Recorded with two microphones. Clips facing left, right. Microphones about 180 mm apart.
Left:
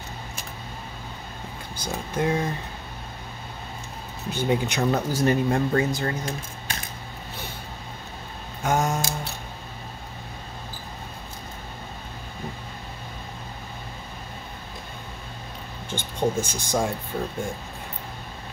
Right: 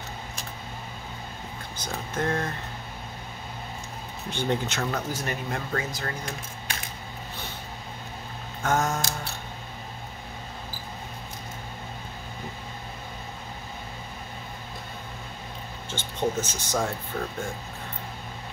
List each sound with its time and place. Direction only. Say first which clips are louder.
1.8 s speech: left 3 dB; 10° left (ahead or behind)
4.3 s speech: left 3 dB; 5° left (ahead or behind)
4.9 s speech: left 8 dB; 30° left (ahead or behind)
8.6 s speech: left 2 dB; 15° left (ahead or behind)
15.9 s speech: left 3 dB; 10° left (ahead or behind)